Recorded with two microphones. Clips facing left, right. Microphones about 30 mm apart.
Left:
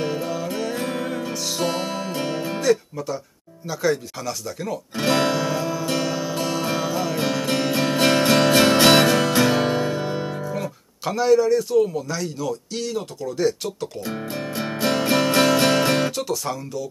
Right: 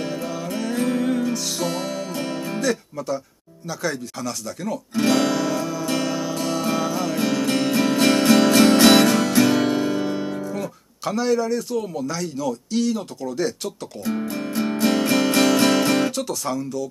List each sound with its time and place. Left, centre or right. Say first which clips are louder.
0.0 s music: left 2 dB; centre
1.6 s music: left 1 dB; centre
3.6 s speech: left 4 dB; centre
4.9 s music: right 1 dB; centre
14.0 s music: right 6 dB; centre
16.2 s speech: right 1 dB; centre